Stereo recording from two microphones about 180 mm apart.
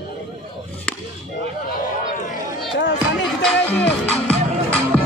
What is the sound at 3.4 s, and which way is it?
Music, 5° left (ahead or behind).